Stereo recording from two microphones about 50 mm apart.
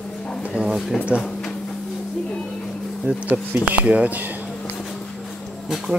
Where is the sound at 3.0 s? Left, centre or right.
Right.